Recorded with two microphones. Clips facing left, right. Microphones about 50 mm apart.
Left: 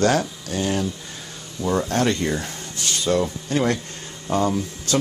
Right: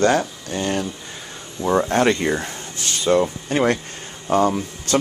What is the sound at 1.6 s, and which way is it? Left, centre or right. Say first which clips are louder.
Speech: right 4 dB; right.